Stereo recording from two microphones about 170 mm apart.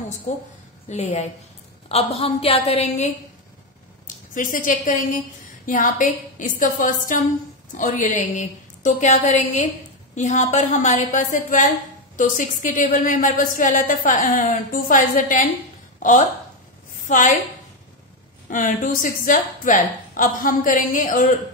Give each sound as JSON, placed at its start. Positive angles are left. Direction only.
{"t": 0.3, "sound": "a woman's voice", "side_deg": 45}
{"t": 4.3, "sound": "speech", "side_deg": 50}
{"t": 18.5, "sound": "speech", "side_deg": 50}